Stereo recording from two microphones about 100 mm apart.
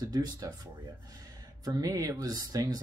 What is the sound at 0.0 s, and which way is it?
Speech, 40° right (ahead or behind).